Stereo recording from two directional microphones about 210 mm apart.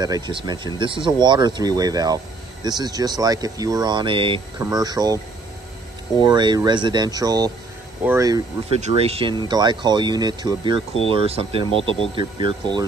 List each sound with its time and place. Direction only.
0.0 s speech: 20° right (ahead or behind)
8.6 s speech: 30° right (ahead or behind)